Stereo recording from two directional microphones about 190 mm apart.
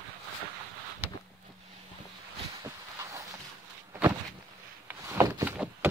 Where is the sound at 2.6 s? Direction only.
15° right (ahead or behind).